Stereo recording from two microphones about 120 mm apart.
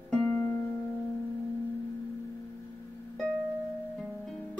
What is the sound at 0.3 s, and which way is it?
Music, 20° left (ahead or behind).